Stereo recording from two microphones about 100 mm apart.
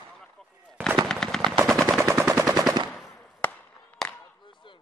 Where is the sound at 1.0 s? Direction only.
5° left (ahead or behind).